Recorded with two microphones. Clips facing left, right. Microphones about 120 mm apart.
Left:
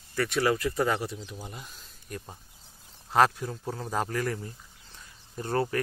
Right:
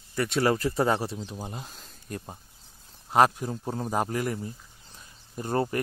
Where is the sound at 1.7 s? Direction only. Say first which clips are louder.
Right 3 dB; 50° right (ahead or behind).